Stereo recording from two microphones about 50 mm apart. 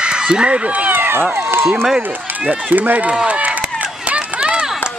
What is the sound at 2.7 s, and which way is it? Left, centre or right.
Speech, right.